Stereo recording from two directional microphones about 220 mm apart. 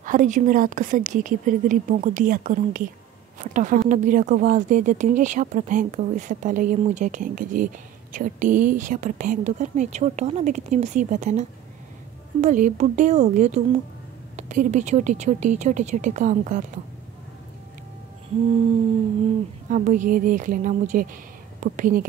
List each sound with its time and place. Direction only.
0.0 s speech: 35° right (ahead or behind)
19.7 s a woman's voice: 35° right (ahead or behind)